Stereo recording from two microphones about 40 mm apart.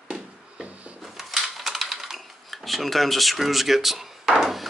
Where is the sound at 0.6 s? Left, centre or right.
Right.